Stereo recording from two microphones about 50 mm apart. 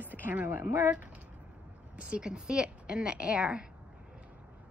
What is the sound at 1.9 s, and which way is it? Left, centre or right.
A woman's voice, centre.